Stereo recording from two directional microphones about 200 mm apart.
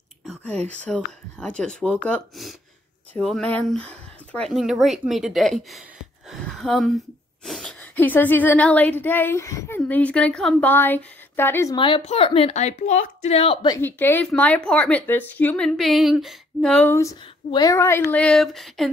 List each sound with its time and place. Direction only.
0.2 s whispering: 5° left (ahead or behind)
0.8 s speech: 5° left (ahead or behind)
11.7 s speech: 25° left (ahead or behind)
13.7 s speech: 10° left (ahead or behind)